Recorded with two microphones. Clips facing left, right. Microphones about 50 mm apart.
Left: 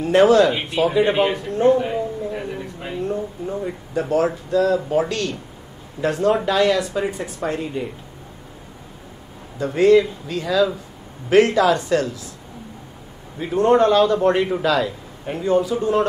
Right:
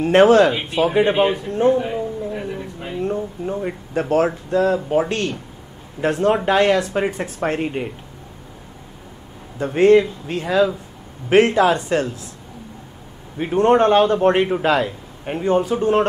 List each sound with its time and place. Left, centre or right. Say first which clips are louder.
0.0 s a man's voice: right 2 dB; right
1.0 s speech: right 1 dB; centre
1.5 s speech: left 3 dB; right
2.3 s a sound: right 1 dB; centre
3.4 s a man's voice: right 2 dB; right
9.6 s a man's voice: right 1 dB; right
13.4 s a man's voice: right 1 dB; right